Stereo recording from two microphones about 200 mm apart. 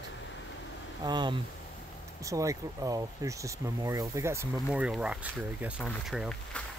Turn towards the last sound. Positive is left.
turn(degrees=0)  # may be behind; listen again after turning